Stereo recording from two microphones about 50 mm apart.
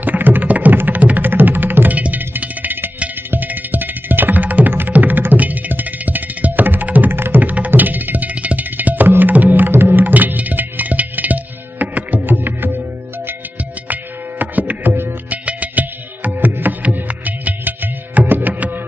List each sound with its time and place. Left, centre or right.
0.0 s music: right
7.4 s music: right
9.7 s music: right
14.4 s music: right